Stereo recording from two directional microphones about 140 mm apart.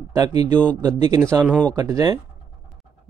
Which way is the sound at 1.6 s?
25° right (ahead or behind).